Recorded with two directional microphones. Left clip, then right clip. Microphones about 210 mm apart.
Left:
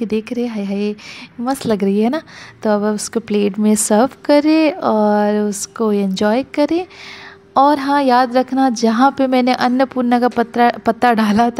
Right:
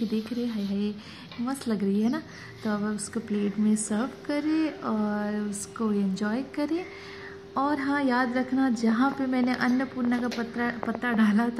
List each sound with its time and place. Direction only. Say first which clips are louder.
0.1 s a woman's voice: left 11 dB; 35° left (ahead or behind)